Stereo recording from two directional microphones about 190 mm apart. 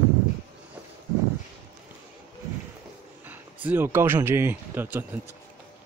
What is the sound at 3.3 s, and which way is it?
Speech, 10° right (ahead or behind).